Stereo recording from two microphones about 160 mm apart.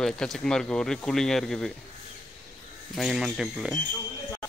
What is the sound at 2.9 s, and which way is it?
Speech, centre (ahead or behind).